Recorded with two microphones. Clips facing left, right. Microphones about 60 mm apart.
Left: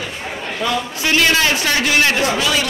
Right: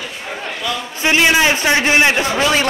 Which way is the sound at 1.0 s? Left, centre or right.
Right.